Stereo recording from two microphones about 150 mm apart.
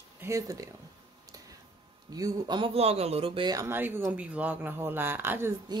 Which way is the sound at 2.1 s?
25° right (ahead or behind).